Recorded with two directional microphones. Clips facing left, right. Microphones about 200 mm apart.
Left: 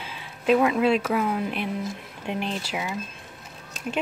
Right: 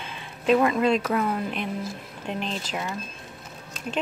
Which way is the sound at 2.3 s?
10° left (ahead or behind).